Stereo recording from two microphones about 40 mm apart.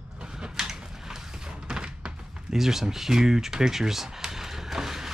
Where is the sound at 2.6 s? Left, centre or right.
Centre.